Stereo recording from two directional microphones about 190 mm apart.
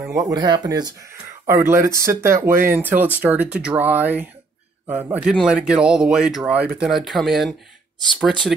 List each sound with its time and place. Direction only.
0.1 s a man's voice: 20° right (ahead or behind); by 8.5 s centre (ahead or behind)